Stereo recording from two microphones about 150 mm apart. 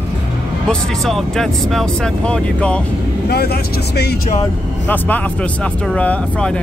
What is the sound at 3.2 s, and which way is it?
Speech, 90° left.